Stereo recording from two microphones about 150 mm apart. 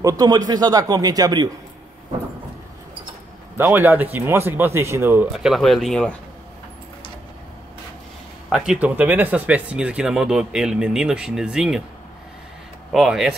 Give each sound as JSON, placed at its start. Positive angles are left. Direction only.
{"t": 0.0, "sound": "speech", "side_deg": -25}
{"t": 3.5, "sound": "speech", "side_deg": -15}
{"t": 5.3, "sound": "speech", "side_deg": 0}
{"t": 8.5, "sound": "speech", "side_deg": -5}
{"t": 12.9, "sound": "speech", "side_deg": -5}